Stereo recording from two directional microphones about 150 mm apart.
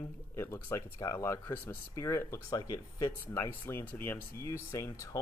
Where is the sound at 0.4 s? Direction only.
15° left (ahead or behind).